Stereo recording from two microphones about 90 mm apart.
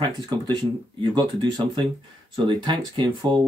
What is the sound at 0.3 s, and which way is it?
Speech, 50° right (ahead or behind).